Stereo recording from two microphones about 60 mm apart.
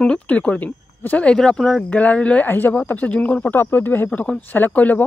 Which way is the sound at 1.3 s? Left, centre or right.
Centre.